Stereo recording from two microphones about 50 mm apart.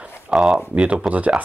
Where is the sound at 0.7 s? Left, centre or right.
Right.